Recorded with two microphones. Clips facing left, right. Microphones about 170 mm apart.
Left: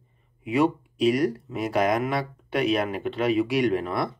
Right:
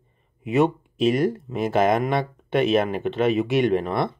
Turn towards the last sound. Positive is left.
turn(degrees=-25)  # may be behind; listen again after turning